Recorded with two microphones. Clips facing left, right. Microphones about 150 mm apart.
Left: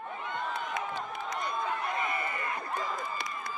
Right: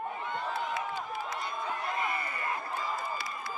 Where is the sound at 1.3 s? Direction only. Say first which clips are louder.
Left 2 dB; 20° left (ahead or behind).